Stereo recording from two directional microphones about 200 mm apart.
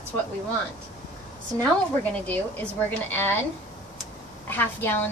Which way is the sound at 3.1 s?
10° left (ahead or behind).